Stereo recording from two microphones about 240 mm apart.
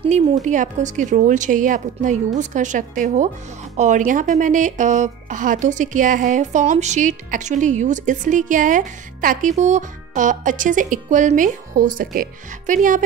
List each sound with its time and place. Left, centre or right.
0.0 s a woman's voice: right